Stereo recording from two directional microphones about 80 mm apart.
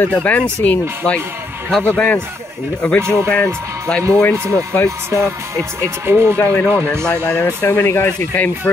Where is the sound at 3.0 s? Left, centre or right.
Right.